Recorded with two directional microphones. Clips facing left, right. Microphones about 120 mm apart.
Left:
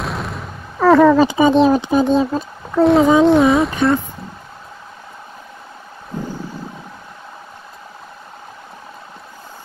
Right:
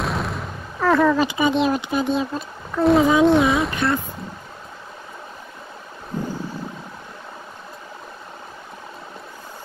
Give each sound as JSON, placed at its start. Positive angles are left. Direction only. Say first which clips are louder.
{"t": 0.0, "sound": "artillery fire", "louder": "even", "side_deg": 0}
{"t": 1.2, "sound": "speech", "louder": "left 7 dB", "side_deg": 35}
{"t": 2.8, "sound": "speech", "louder": "left 4 dB", "side_deg": 0}